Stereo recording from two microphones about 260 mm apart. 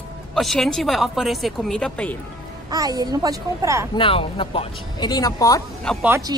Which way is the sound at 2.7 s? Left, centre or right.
Centre.